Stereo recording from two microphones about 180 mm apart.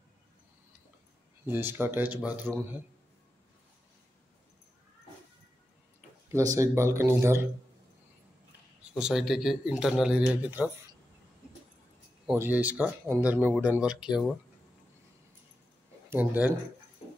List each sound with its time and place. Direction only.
1.4 s speech: 10° right (ahead or behind)
6.3 s speech: 15° right (ahead or behind)
8.9 s speech: 5° right (ahead or behind)
12.4 s speech: 10° right (ahead or behind)
16.1 s speech: 10° right (ahead or behind)